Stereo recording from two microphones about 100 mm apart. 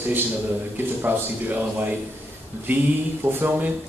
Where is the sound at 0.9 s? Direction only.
20° right (ahead or behind).